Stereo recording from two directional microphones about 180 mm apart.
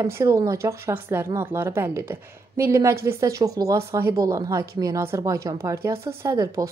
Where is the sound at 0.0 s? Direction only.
15° right (ahead or behind).